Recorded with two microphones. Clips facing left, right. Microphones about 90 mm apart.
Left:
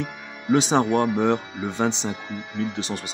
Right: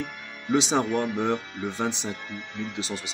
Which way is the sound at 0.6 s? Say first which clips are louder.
Left 4 dB; 55° left (ahead or behind).